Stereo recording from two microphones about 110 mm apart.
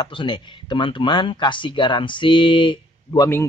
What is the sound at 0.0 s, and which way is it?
Speech, 45° left (ahead or behind).